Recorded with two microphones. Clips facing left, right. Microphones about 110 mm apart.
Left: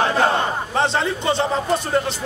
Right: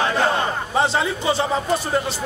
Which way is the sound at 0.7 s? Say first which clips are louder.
Right 1 dB; 5° right (ahead or behind).